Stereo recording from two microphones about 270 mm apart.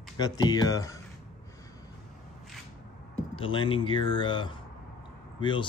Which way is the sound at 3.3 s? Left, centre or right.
Centre.